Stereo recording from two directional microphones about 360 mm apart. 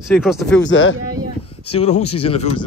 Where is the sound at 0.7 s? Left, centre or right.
Left.